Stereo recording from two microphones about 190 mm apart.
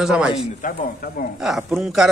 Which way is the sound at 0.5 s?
45° left (ahead or behind).